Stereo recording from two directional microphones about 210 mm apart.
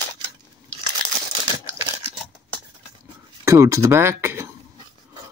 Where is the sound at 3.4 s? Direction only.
15° right (ahead or behind).